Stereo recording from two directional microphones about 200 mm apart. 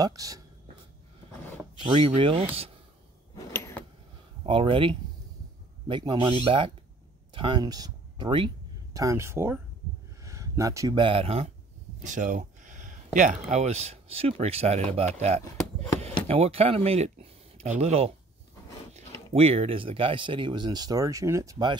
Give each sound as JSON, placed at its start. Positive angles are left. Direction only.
{"t": 0.0, "sound": "speech", "side_deg": -20}
{"t": 1.8, "sound": "speech", "side_deg": -25}
{"t": 3.3, "sound": "a sound", "side_deg": 15}
{"t": 4.5, "sound": "speech", "side_deg": -25}
{"t": 12.0, "sound": "speech", "side_deg": -40}